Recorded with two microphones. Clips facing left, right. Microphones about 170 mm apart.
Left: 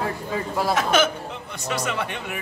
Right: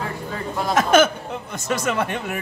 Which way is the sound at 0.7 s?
50° right (ahead or behind).